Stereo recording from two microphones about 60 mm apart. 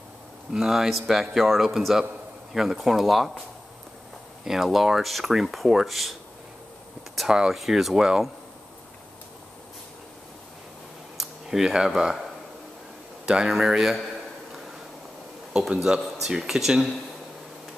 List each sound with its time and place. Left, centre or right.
0.5 s speech: centre
4.5 s speech: centre
7.2 s speech: centre
11.4 s speech: centre
13.2 s speech: centre
15.5 s speech: centre